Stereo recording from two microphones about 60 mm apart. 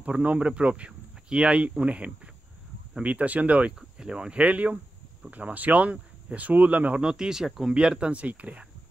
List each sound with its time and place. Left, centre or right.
0.0 s speech: right
4.0 s speech: centre
7.0 s speech: centre